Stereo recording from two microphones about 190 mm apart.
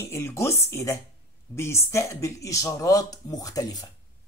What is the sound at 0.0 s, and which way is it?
Speech, 15° left (ahead or behind).